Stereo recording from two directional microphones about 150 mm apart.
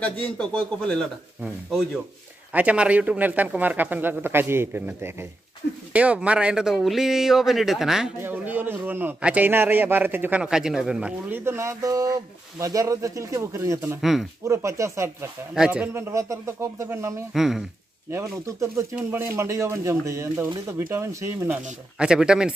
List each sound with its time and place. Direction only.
0.0 s speech: 5° left (ahead or behind)
2.5 s a man's voice: 10° right (ahead or behind)
8.2 s a man's voice: 15° right (ahead or behind)
15.5 s a man's voice: 5° right (ahead or behind)
17.3 s speech: centre (ahead or behind)
18.1 s a man's voice: 20° right (ahead or behind)
21.9 s speech: 5° right (ahead or behind)